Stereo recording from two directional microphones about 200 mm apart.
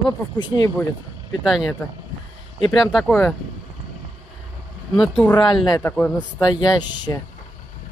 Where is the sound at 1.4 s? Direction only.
Centre (ahead or behind).